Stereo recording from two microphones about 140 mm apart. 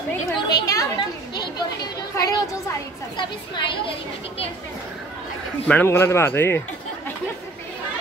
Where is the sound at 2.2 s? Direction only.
25° left (ahead or behind).